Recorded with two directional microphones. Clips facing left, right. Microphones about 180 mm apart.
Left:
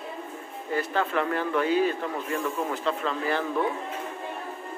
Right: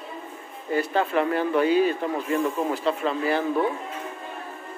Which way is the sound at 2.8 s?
20° right (ahead or behind).